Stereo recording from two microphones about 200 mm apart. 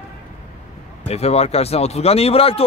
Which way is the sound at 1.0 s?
30° left (ahead or behind).